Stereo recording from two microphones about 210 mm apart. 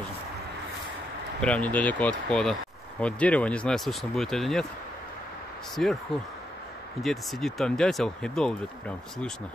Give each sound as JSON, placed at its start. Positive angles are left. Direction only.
{"t": 1.4, "sound": "speech", "side_deg": 5}
{"t": 5.8, "sound": "speech", "side_deg": 5}
{"t": 7.0, "sound": "speech", "side_deg": 0}